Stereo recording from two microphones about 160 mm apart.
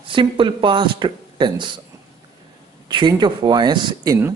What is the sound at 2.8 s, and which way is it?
A man's voice, 25° right (ahead or behind).